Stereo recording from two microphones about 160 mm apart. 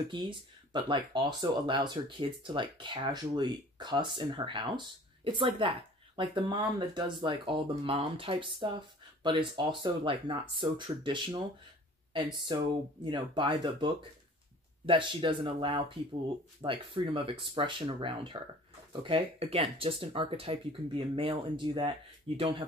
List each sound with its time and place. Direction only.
0.1 s speech: 30° right (ahead or behind)